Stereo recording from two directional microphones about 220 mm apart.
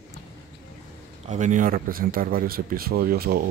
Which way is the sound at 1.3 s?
35° right (ahead or behind).